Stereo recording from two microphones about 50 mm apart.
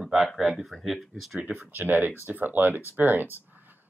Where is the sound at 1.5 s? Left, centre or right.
Right.